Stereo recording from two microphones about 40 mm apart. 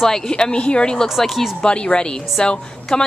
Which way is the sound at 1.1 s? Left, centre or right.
Centre.